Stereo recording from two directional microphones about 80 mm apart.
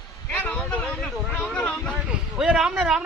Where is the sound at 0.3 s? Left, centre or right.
Centre.